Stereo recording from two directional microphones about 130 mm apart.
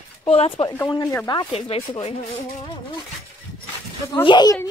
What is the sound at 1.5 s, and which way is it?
Speech, 50° left (ahead or behind).